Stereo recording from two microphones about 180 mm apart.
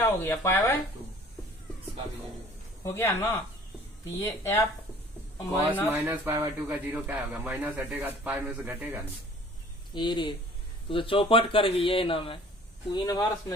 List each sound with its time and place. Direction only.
0.0 s speech: 15° left (ahead or behind)
2.8 s speech: 15° left (ahead or behind)
5.9 s a man's voice: 10° right (ahead or behind)
9.9 s speech: 25° left (ahead or behind)
12.9 s speech: 20° left (ahead or behind)